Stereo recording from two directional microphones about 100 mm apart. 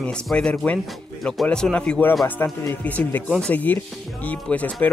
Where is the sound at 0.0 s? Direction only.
10° left (ahead or behind).